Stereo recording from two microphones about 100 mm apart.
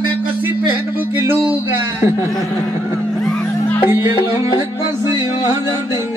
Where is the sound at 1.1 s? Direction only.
25° right (ahead or behind).